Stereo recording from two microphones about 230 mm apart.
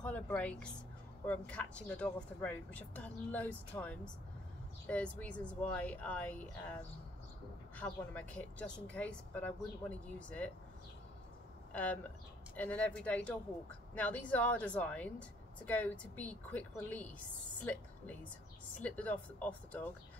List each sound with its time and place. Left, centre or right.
0.0 s speech: centre
7.7 s speech: centre
11.7 s speech: centre
18.8 s speech: centre